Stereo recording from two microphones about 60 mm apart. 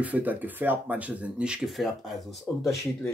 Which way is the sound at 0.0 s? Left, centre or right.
Right.